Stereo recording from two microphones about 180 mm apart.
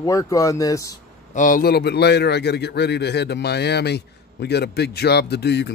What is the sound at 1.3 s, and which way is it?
A man's voice, 50° left (ahead or behind).